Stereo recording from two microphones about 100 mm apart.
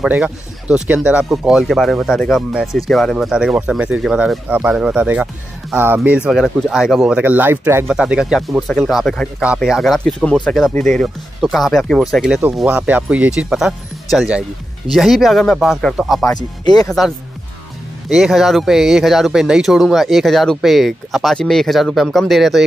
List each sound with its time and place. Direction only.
0.0 s speech: 10° right (ahead or behind)
6.1 s speech: 10° right (ahead or behind)
7.2 s speech: 20° right (ahead or behind)
7.9 s speech: 10° right (ahead or behind)
12.6 s speech: 15° right (ahead or behind)
16.3 s speech: 40° left (ahead or behind)
18.1 s speech: 5° right (ahead or behind)